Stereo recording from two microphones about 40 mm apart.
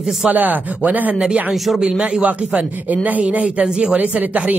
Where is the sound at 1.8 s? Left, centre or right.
Right.